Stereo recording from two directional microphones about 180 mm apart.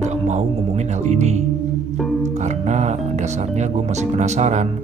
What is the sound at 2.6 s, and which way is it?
Speech, 40° right (ahead or behind).